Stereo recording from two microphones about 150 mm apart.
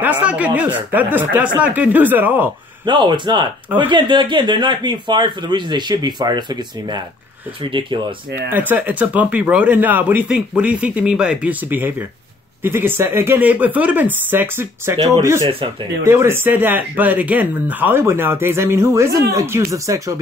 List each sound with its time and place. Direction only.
0.0 s speech: 10° right (ahead or behind)
2.8 s speech: 30° right (ahead or behind)
8.4 s speech: 15° right (ahead or behind)